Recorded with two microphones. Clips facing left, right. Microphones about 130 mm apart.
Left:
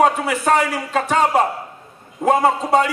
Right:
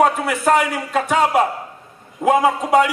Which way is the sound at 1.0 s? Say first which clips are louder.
Even; 10° right (ahead or behind).